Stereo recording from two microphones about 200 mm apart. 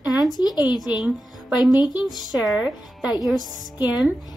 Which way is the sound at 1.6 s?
20° left (ahead or behind).